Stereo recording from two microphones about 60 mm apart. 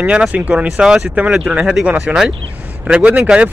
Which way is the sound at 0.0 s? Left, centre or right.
Right.